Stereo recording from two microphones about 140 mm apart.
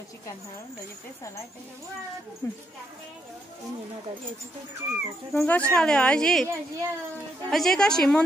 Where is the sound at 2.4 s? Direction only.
20° left (ahead or behind).